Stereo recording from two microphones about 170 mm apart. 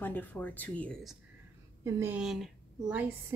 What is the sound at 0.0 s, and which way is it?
Speech, 10° left (ahead or behind).